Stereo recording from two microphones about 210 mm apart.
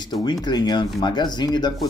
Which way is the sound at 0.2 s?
20° left (ahead or behind).